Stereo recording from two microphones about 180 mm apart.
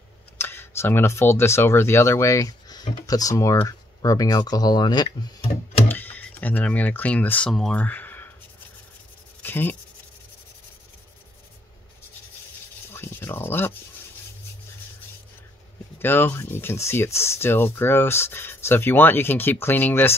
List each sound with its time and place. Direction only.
0.4 s speech: 15° left (ahead or behind)
5.9 s speech: 10° left (ahead or behind)
9.4 s rub: 10° left (ahead or behind)
12.9 s rub: 10° left (ahead or behind)
16.0 s speech: 10° left (ahead or behind)